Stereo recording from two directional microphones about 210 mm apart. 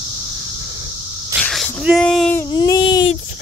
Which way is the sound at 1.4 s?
Centre (ahead or behind).